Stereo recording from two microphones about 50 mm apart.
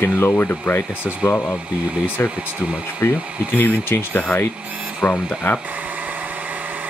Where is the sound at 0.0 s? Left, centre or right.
Left.